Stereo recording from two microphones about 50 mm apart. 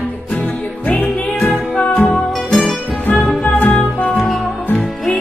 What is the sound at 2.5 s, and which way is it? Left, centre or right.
Music, centre.